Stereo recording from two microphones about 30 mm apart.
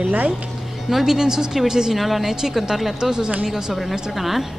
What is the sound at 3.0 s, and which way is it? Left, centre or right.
Speech, right.